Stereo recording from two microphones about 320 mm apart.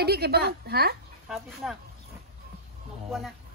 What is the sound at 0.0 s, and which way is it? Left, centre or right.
Speech, right.